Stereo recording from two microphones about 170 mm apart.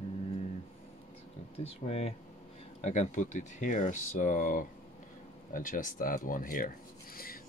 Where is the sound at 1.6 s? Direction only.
40° left (ahead or behind).